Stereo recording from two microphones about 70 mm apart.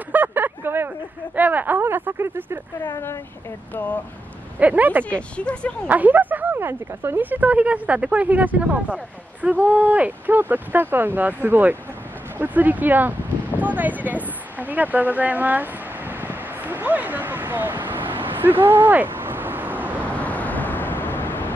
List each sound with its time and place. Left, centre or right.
0.1 s speech: right
3.7 s speech: left
4.6 s speech: right
5.1 s speech: centre
5.9 s a sound: right
6.7 s speech: right
13.6 s a sound: right
20.2 s vehicle: left